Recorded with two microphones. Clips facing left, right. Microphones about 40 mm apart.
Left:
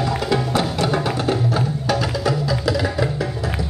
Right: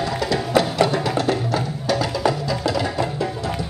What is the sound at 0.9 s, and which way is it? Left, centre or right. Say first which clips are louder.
Music: even; left.